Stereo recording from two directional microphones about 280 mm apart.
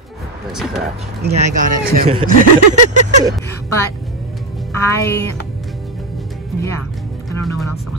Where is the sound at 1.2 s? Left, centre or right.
Right.